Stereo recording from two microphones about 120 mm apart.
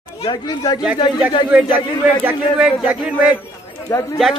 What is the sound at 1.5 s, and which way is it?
A man's voice, 15° right (ahead or behind).